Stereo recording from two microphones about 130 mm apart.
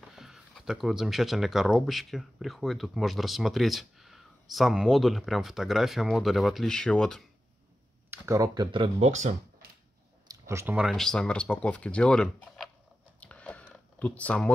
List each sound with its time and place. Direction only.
0.1 s speech: centre (ahead or behind)
8.1 s speech: 25° right (ahead or behind)
9.0 s speech: 65° right (ahead or behind)
10.2 s a sound: 20° right (ahead or behind)
10.8 s speech: centre (ahead or behind)
13.2 s a sound: 10° left (ahead or behind)